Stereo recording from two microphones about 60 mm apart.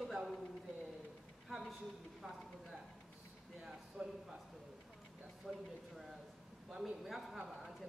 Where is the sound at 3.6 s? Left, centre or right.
Centre.